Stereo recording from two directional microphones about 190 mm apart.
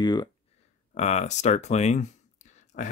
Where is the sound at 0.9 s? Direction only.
35° left (ahead or behind).